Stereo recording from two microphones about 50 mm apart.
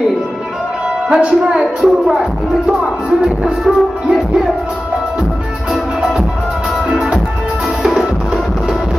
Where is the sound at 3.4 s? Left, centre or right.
Centre.